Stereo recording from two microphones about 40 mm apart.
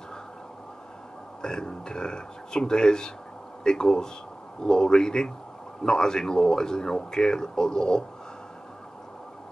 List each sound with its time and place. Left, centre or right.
1.4 s speech: centre